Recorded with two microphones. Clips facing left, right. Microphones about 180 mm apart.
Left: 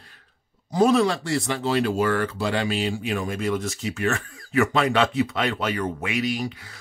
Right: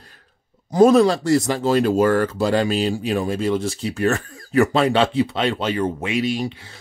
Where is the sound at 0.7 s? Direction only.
45° right (ahead or behind).